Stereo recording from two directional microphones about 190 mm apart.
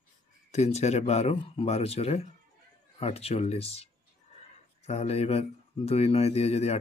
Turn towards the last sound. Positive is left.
turn(degrees=35)  # may be behind; listen again after turning